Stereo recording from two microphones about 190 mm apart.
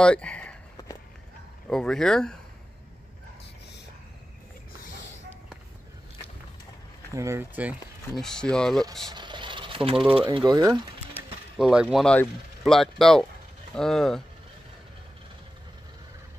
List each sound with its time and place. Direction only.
0.0 s speech: 5° left (ahead or behind)
1.7 s speech: 5° left (ahead or behind)
7.2 s speech: 15° right (ahead or behind)
8.2 s speech: 5° left (ahead or behind)
9.1 s a sound: 25° right (ahead or behind)
9.9 s speech: 5° right (ahead or behind)
10.2 s speech: 25° right (ahead or behind)
11.5 s speech: 5° right (ahead or behind)